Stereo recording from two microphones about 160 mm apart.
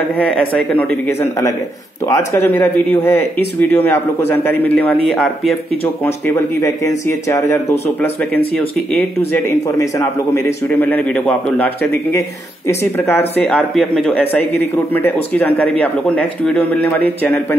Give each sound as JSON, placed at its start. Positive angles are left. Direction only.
{"t": 0.1, "sound": "a man's voice", "side_deg": 10}
{"t": 6.0, "sound": "a man's voice", "side_deg": 15}
{"t": 13.4, "sound": "a man's voice", "side_deg": 5}